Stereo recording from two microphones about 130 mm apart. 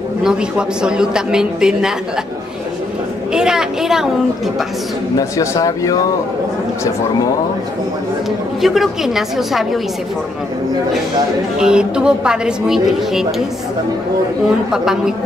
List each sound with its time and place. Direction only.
0.2 s a woman's voice: 5° right (ahead or behind)
3.3 s a woman's voice: 5° right (ahead or behind)
5.1 s speech: 25° left (ahead or behind)
8.5 s a woman's voice: centre (ahead or behind)
11.6 s a woman's voice: 5° right (ahead or behind)
14.7 s a woman's voice: 5° right (ahead or behind)